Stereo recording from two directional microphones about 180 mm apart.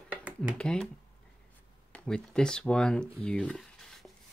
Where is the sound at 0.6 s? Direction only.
5° left (ahead or behind).